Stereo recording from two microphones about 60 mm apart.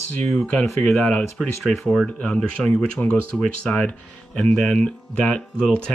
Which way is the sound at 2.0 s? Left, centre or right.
Centre.